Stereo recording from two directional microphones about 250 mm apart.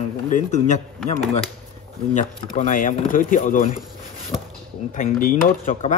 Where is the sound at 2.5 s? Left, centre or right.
Left.